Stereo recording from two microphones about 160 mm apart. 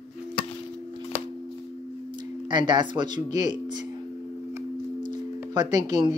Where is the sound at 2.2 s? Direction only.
30° right (ahead or behind).